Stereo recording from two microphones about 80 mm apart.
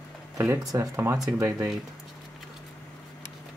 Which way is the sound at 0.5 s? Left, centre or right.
Right.